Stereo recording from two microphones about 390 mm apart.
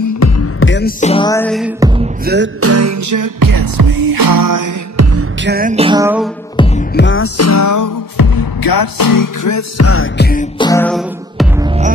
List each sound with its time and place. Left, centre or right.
0.2 s music: left; by 1.9 s centre
2.0 s music: right
5.1 s music: right; by 6.2 s centre
7.0 s music: left
10.6 s music: centre